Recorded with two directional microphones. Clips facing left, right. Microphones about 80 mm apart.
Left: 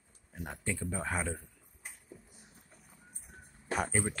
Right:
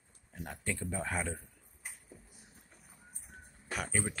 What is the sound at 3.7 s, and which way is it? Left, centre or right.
Speech, left.